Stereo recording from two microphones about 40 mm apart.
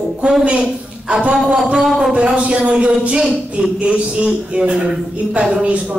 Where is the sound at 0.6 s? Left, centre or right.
Centre.